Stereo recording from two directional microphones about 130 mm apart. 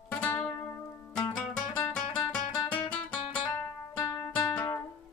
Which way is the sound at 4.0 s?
30° left (ahead or behind).